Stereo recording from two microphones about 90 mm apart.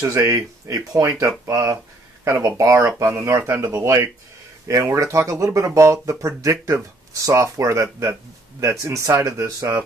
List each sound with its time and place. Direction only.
0.0 s speech: 35° right (ahead or behind)
2.2 s speech: 35° right (ahead or behind)